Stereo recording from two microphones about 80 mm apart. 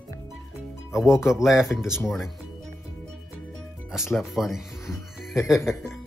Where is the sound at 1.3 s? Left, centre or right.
Centre.